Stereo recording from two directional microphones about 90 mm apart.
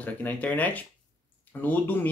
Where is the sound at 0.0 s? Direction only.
15° left (ahead or behind).